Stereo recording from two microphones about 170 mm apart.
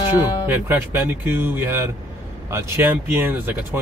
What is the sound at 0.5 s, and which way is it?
Speech, 15° right (ahead or behind).